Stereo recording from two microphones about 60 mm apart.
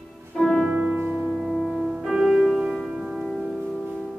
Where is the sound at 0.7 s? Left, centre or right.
Right.